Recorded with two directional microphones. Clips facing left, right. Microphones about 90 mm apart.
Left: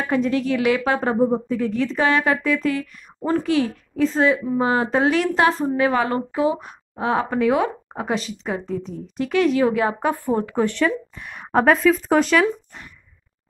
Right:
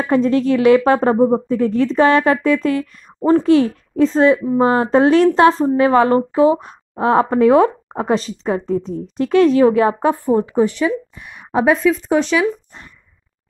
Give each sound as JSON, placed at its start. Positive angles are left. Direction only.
{"t": 0.0, "sound": "speech", "side_deg": -35}
{"t": 10.2, "sound": "a woman's voice", "side_deg": -20}